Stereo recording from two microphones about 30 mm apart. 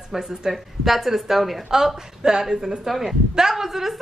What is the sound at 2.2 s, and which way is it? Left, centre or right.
Speech, right.